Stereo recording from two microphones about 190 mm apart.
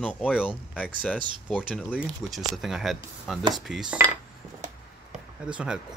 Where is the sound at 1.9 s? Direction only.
5° right (ahead or behind).